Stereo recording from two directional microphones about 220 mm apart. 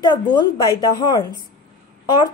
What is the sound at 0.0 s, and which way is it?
A woman's voice, 20° left (ahead or behind).